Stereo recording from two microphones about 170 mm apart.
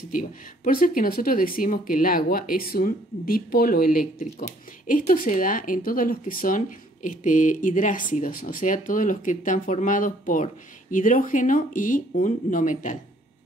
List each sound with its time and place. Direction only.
0.1 s speech: 55° left (ahead or behind)